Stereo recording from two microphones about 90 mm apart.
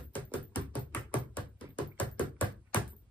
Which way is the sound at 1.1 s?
70° left (ahead or behind).